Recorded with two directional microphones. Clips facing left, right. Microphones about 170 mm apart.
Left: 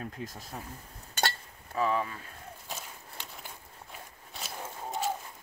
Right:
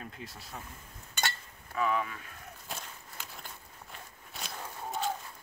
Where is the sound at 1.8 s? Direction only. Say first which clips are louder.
Left 2 dB; 30° left (ahead or behind).